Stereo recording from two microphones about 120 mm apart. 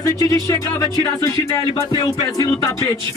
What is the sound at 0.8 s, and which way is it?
Speech, 30° left (ahead or behind).